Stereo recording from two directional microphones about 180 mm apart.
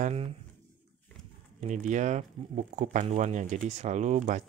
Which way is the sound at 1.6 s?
40° right (ahead or behind).